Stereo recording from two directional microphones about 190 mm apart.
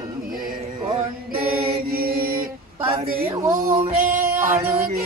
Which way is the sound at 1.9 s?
55° right (ahead or behind).